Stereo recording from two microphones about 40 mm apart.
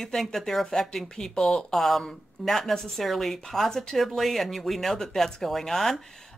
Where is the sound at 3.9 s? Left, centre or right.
Centre.